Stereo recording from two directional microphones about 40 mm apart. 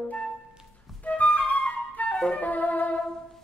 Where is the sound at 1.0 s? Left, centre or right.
Left.